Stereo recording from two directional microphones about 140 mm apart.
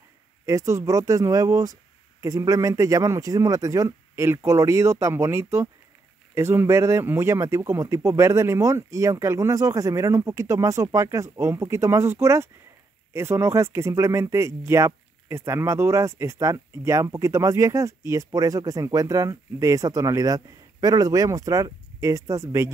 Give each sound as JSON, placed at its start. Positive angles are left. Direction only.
{"t": 0.5, "sound": "speech", "side_deg": -20}